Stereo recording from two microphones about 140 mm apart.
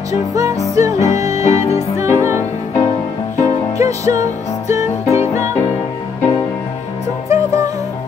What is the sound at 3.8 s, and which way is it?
Music, 20° right (ahead or behind).